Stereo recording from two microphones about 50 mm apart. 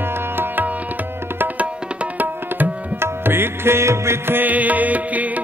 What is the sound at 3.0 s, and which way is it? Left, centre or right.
Music, right.